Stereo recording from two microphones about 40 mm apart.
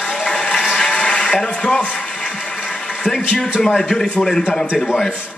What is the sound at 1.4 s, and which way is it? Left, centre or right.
Speech, left.